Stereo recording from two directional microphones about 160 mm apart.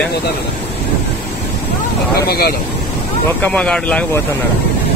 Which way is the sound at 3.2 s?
10° left (ahead or behind).